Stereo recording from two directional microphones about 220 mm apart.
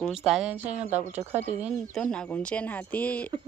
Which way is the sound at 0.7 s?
30° right (ahead or behind).